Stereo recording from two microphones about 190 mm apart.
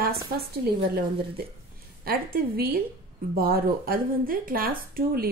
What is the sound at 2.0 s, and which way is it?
Speech, 50° right (ahead or behind).